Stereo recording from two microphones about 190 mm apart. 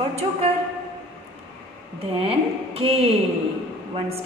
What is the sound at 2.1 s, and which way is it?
A woman's voice, 30° right (ahead or behind).